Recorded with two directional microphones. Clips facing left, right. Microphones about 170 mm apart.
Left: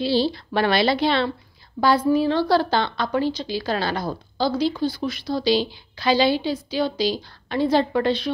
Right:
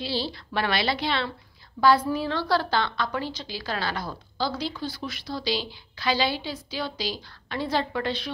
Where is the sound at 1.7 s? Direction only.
20° left (ahead or behind).